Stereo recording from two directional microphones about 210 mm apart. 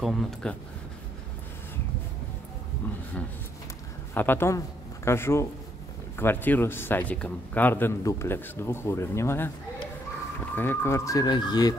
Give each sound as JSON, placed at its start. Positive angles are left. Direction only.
{"t": 0.0, "sound": "speech", "side_deg": 0}
{"t": 4.1, "sound": "a man's voice", "side_deg": 10}
{"t": 10.5, "sound": "a man's voice", "side_deg": 10}